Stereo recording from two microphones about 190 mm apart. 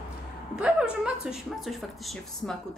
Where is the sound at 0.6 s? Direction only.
5° right (ahead or behind).